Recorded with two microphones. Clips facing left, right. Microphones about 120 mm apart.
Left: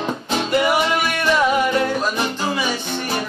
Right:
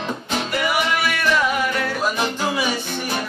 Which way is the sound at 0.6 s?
25° left (ahead or behind).